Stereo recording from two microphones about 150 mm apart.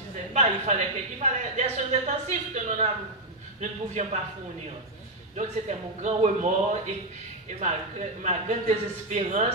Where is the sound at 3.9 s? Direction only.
50° right (ahead or behind).